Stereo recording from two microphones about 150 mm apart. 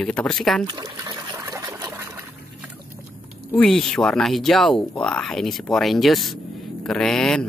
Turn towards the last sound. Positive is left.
turn(degrees=5)  # may be behind; listen again after turning